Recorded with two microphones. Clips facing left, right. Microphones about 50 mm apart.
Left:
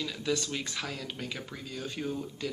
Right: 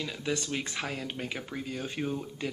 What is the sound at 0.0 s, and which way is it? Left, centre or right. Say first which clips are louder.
Speech: left 1 dB; centre.